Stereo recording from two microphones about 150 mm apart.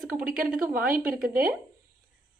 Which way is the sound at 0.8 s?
75° right (ahead or behind).